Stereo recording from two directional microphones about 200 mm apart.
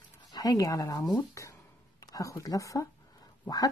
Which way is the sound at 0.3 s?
20° left (ahead or behind).